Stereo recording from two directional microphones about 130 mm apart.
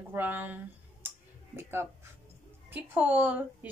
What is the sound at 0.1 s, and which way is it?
Speech, 15° right (ahead or behind).